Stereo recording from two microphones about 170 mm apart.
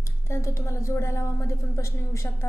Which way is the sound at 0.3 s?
15° left (ahead or behind).